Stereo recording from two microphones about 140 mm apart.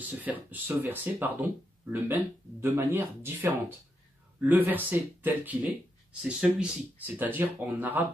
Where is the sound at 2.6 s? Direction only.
15° right (ahead or behind).